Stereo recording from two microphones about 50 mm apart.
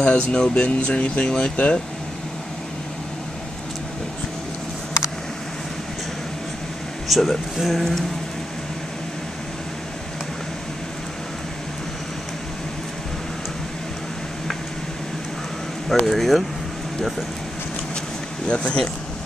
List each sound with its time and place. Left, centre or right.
0.0 s speech: left
7.1 s speech: centre
16.1 s speech: centre
18.5 s speech: left